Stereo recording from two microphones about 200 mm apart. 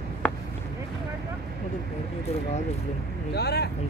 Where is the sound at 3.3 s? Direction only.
55° left (ahead or behind).